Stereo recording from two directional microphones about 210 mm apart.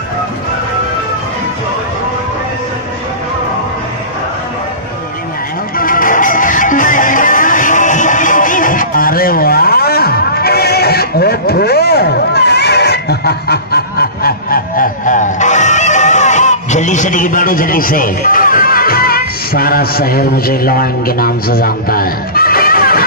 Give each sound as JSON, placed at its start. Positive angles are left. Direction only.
{"t": 5.8, "sound": "music", "side_deg": 40}